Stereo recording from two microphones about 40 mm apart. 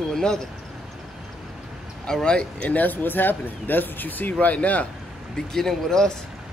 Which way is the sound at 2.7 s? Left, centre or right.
Left.